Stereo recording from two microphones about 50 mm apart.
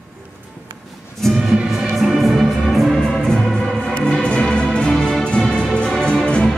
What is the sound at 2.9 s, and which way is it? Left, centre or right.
Music, centre.